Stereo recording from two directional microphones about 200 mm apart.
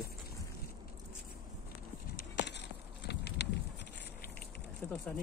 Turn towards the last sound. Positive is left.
turn(degrees=10)  # may be behind; listen again after turning